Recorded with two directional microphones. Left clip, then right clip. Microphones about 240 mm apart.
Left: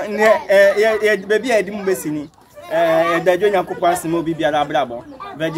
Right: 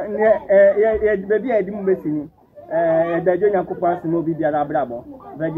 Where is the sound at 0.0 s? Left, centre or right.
Left.